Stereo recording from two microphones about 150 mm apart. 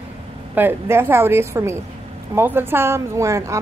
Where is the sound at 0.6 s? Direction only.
15° right (ahead or behind).